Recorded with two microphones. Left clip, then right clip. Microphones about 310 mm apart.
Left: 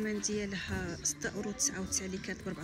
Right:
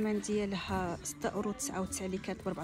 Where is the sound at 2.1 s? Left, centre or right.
Right.